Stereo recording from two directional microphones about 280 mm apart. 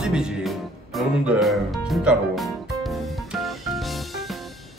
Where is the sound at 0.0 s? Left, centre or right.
Centre.